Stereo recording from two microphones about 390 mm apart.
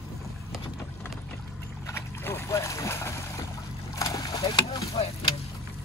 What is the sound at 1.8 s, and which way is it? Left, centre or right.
Boat, centre.